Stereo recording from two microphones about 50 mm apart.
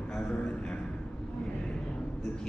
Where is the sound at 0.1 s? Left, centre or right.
Centre.